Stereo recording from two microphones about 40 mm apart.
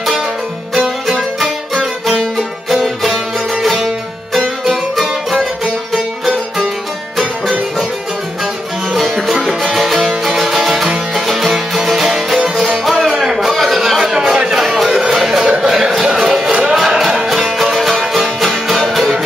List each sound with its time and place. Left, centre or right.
0.8 s music: centre
9.0 s music: centre
9.3 s music: centre
13.2 s a sound: centre
14.1 s a sound: centre
14.6 s music: centre